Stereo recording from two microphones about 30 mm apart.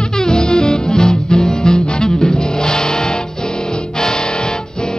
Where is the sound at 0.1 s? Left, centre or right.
Left.